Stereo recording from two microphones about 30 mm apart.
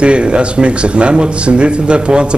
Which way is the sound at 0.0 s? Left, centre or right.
Right.